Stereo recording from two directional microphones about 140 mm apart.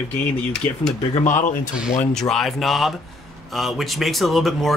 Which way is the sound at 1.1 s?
60° left (ahead or behind).